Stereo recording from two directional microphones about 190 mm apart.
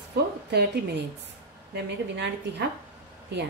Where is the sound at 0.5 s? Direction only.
60° right (ahead or behind).